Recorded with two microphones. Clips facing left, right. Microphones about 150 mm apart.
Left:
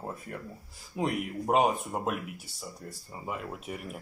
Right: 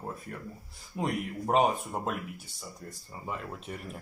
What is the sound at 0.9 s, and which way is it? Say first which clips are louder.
Speech: left 1 dB; 5° left (ahead or behind).